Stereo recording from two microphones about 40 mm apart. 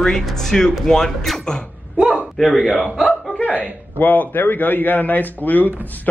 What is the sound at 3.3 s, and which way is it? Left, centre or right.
A man's voice, left.